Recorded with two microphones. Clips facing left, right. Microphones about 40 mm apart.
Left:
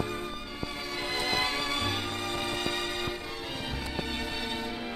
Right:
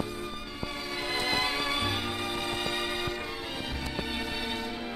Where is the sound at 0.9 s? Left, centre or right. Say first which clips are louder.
Right 1 dB; centre.